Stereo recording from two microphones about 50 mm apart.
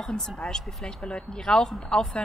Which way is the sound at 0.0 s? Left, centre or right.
Centre.